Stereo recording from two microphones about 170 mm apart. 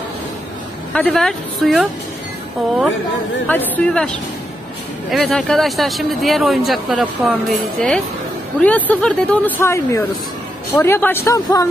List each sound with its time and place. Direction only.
0.9 s speech: 5° left (ahead or behind)
3.4 s speech: 10° left (ahead or behind)